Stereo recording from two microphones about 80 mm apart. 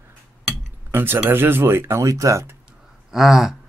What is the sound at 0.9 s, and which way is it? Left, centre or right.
Speech, right.